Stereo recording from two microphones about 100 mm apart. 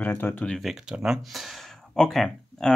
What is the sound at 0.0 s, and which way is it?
Speech, 20° left (ahead or behind).